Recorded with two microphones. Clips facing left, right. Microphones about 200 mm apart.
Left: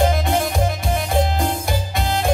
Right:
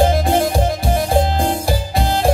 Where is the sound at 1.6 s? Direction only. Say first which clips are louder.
Right 4 dB; 35° right (ahead or behind).